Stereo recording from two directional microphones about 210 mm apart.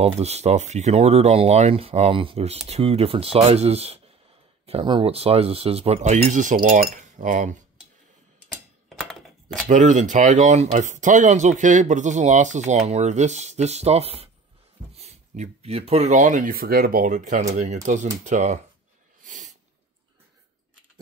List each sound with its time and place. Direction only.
0.0 s speech: 30° right (ahead or behind)
9.7 s speech: 35° right (ahead or behind)
19.2 s snort: 35° right (ahead or behind)